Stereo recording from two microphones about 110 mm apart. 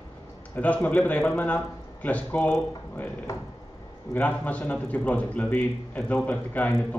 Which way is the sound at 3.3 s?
25° left (ahead or behind).